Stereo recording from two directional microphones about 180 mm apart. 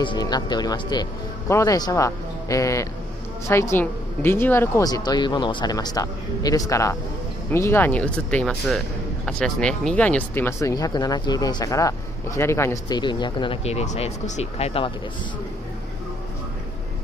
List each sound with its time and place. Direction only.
0.0 s speech: 25° left (ahead or behind)